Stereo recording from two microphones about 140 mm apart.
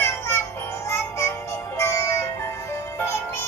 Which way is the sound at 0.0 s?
15° left (ahead or behind).